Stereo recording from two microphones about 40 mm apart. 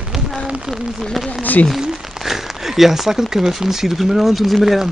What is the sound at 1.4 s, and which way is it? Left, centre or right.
Speech, left.